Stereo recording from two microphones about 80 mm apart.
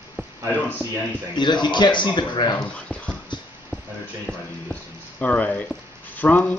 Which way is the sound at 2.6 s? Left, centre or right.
Centre.